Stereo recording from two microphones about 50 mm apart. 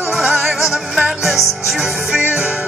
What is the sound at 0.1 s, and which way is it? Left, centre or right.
Music, centre.